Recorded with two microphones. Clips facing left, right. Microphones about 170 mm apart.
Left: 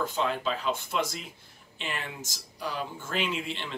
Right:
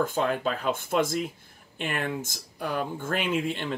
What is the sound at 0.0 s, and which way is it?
Speech, 50° right (ahead or behind).